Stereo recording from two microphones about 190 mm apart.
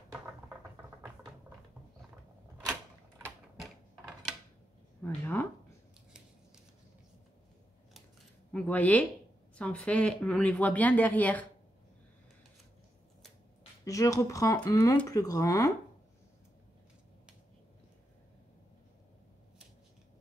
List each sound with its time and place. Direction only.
5.0 s a sound: 10° left (ahead or behind)
8.5 s speech: 5° left (ahead or behind)
13.8 s speech: 15° left (ahead or behind)